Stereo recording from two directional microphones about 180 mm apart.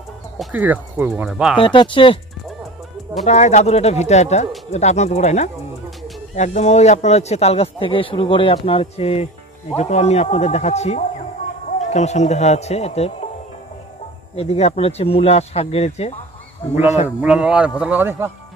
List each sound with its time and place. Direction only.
0.4 s speech: 10° right (ahead or behind)
1.6 s speech: 30° left (ahead or behind)
3.3 s a man's voice: 40° left (ahead or behind)
14.3 s a man's voice: 35° left (ahead or behind)
17.2 s speech: 5° right (ahead or behind)